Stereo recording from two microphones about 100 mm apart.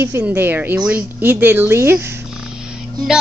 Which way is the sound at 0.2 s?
20° right (ahead or behind).